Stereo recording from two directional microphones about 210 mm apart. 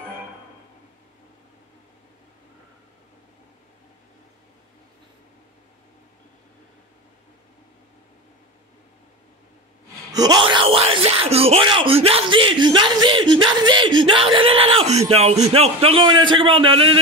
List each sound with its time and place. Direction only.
10.1 s speech: 20° right (ahead or behind)